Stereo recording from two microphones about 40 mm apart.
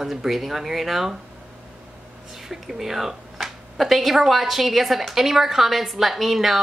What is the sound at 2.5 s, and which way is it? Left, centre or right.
Speech, centre.